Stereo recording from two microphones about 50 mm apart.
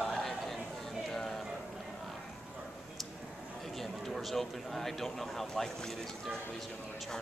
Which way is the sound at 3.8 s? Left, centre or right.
Centre.